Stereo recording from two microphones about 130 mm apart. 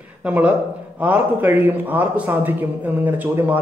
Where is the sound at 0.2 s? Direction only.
10° right (ahead or behind).